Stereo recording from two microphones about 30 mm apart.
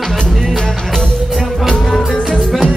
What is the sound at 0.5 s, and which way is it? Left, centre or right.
Music, centre.